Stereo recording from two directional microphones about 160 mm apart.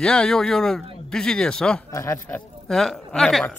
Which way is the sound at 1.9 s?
20° left (ahead or behind).